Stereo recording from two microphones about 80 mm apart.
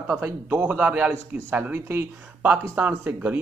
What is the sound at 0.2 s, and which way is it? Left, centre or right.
Speech, right.